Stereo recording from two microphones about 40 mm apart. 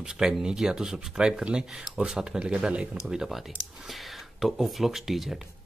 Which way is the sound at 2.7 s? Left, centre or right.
Right.